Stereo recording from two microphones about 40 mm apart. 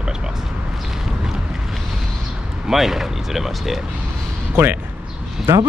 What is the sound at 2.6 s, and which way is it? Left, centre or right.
Speech, centre.